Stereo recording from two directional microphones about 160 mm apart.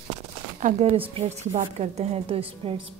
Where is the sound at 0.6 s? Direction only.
45° right (ahead or behind).